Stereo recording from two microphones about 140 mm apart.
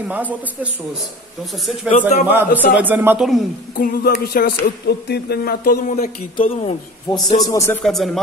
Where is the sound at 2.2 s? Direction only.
15° right (ahead or behind).